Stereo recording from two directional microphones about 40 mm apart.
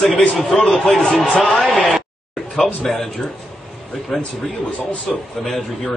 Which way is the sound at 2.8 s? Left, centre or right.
Centre.